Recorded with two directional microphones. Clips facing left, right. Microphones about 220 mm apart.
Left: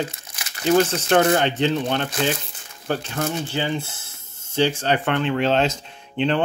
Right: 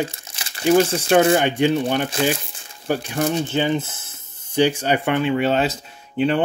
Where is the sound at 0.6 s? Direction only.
10° right (ahead or behind).